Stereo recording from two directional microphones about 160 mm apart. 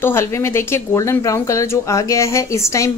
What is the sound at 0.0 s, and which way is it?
Speech, 15° left (ahead or behind).